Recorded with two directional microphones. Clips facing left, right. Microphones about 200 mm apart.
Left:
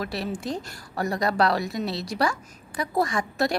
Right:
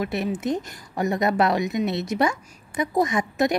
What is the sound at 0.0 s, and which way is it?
A woman's voice, 20° right (ahead or behind).